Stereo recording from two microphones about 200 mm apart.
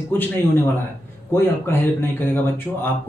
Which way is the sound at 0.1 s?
10° left (ahead or behind).